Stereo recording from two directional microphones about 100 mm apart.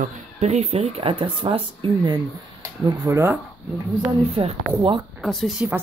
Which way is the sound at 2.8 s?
35° right (ahead or behind).